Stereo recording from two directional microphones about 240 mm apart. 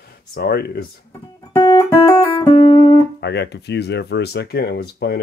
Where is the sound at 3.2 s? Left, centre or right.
Left.